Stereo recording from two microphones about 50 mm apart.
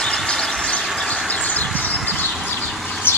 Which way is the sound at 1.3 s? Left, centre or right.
Left.